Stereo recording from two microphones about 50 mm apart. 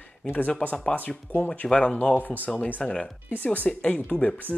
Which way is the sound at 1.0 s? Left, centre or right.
Left.